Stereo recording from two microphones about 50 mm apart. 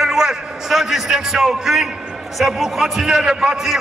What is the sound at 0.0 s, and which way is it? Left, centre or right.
A man's voice, centre.